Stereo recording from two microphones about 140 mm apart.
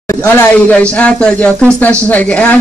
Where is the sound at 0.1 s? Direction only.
20° left (ahead or behind).